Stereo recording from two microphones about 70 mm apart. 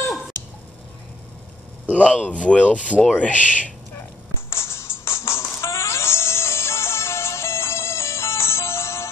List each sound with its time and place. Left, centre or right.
1.9 s speech: centre
4.5 s music: left